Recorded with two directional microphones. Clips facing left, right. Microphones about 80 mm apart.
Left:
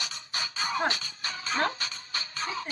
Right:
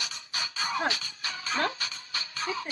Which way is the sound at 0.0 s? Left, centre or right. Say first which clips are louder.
Left 1 dB; left.